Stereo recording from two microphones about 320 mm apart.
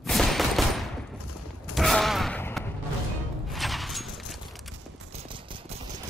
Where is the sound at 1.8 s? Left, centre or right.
Centre.